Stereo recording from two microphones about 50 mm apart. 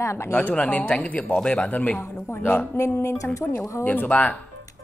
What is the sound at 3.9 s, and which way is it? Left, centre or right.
Speech, left.